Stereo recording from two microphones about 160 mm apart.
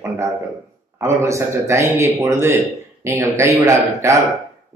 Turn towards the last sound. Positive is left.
turn(degrees=-20)  # may be behind; listen again after turning